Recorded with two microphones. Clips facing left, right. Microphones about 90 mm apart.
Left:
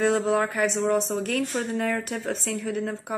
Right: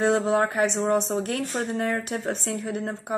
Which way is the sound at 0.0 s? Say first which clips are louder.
Right 1 dB; 40° right (ahead or behind).